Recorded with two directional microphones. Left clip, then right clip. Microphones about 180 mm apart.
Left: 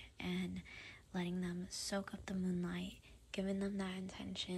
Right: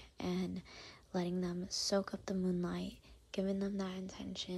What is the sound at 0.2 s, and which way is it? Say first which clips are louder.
Speech: right 4 dB; 25° right (ahead or behind).